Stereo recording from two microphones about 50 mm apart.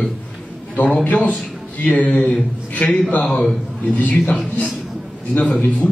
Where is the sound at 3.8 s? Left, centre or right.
Left.